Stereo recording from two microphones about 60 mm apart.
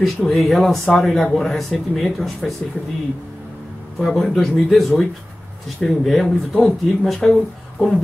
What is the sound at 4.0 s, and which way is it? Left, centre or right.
Speech, centre.